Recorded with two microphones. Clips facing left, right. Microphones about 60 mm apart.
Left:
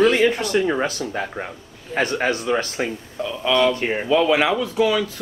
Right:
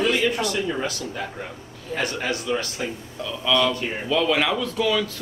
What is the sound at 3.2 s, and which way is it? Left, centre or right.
Speech, left.